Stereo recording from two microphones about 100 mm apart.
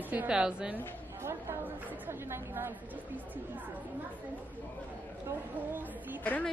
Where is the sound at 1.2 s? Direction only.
20° right (ahead or behind).